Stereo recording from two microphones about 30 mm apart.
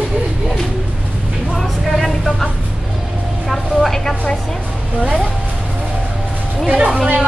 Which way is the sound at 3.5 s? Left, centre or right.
Centre.